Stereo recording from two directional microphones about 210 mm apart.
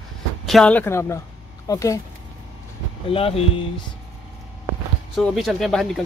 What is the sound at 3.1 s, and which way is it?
Speech, 25° left (ahead or behind).